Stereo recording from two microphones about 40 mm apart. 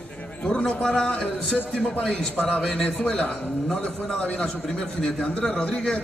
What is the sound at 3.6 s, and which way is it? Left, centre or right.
A man's voice, centre.